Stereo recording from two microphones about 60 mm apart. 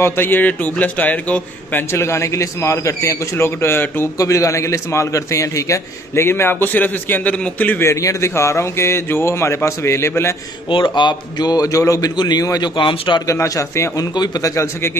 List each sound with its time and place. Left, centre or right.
0.0 s a man's voice: left
1.8 s a man's voice: left
4.2 s a man's voice: left
6.2 s a man's voice: left
7.8 s a man's voice: left
11.5 s a man's voice: left
13.3 s a man's voice: left
13.9 s a man's voice: left